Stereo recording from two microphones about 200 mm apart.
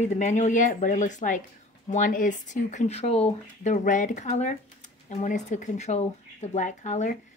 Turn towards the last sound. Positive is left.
turn(degrees=35)  # may be behind; listen again after turning